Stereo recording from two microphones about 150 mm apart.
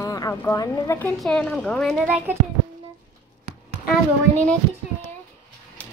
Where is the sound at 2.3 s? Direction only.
10° right (ahead or behind).